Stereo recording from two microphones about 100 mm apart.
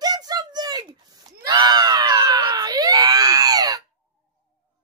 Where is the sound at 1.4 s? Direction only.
45° right (ahead or behind).